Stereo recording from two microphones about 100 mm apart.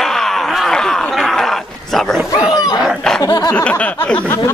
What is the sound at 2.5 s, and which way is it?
Dog, 40° left (ahead or behind).